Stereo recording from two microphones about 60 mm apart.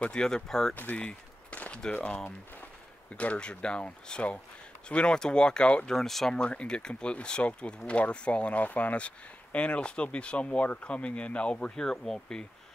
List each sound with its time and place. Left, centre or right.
0.0 s speech: centre
0.9 s a sound: left
2.0 s speech: centre
5.9 s speech: centre